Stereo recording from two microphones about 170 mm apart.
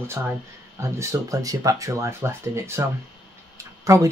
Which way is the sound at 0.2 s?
10° right (ahead or behind).